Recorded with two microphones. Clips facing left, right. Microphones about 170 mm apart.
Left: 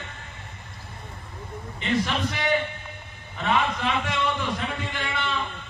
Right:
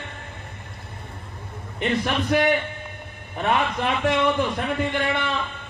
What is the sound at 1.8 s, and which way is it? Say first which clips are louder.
A man's voice: right 2 dB; 55° right (ahead or behind).